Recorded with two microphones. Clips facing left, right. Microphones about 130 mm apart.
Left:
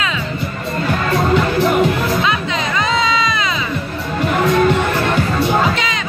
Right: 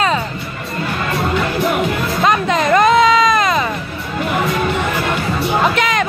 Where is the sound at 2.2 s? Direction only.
50° right (ahead or behind).